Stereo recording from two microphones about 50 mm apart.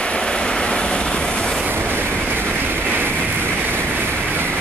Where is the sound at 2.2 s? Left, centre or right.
Right.